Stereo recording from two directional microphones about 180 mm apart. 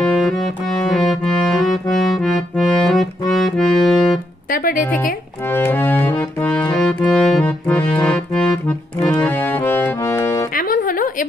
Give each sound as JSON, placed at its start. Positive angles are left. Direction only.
{"t": 0.0, "sound": "music", "side_deg": 5}
{"t": 1.5, "sound": "accordion", "side_deg": 0}
{"t": 4.5, "sound": "speech", "side_deg": 50}
{"t": 5.5, "sound": "music", "side_deg": 10}
{"t": 8.0, "sound": "accordion", "side_deg": 5}
{"t": 9.2, "sound": "music", "side_deg": 10}
{"t": 10.5, "sound": "music", "side_deg": 50}